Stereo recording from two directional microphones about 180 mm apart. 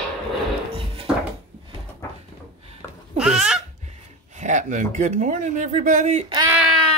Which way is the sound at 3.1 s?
5° right (ahead or behind).